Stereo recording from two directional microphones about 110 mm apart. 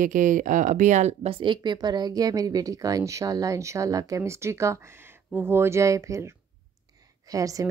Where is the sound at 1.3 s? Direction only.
45° right (ahead or behind); by 6.3 s 30° right (ahead or behind).